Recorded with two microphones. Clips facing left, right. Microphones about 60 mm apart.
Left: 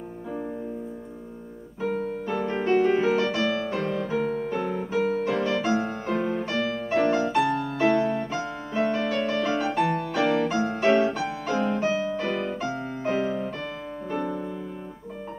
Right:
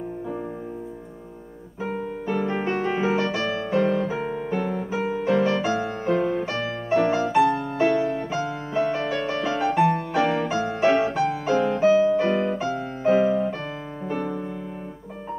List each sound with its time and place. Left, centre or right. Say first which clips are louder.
1.8 s piano: left 1 dB; centre
2.5 s music: left 3 dB; centre
2.8 s music: left 1 dB; centre
4.1 s piano: left 1 dB; centre
5.2 s music: right 3 dB; centre
12.6 s music: right 6 dB; centre